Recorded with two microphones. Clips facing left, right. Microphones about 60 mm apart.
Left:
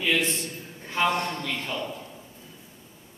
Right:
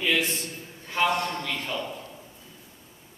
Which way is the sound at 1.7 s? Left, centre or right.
Centre.